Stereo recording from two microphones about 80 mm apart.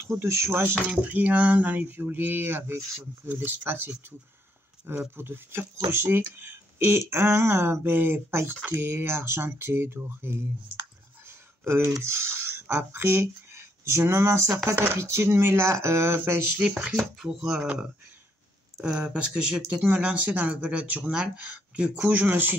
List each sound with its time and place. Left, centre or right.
0.0 s speech: right
0.8 s speech: centre
5.1 s speech: right
11.2 s a sound: right
12.0 s speech: right
16.5 s speech: centre
18.8 s speech: centre